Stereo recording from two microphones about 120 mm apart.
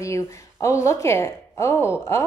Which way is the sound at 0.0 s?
25° left (ahead or behind).